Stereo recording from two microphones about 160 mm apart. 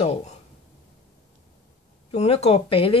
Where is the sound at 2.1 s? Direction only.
40° left (ahead or behind).